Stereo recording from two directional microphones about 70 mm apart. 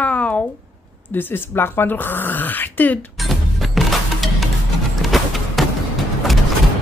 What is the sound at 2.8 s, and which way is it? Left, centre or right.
Speech, left.